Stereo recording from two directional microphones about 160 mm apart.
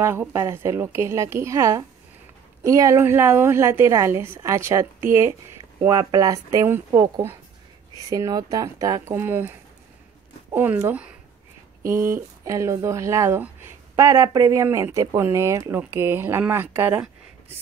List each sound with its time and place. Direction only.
0.0 s speech: 15° right (ahead or behind)